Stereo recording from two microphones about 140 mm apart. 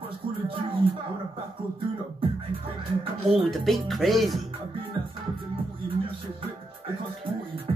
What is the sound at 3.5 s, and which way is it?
Speech, centre (ahead or behind).